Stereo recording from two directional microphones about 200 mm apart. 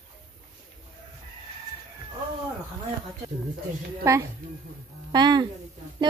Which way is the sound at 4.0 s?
15° right (ahead or behind).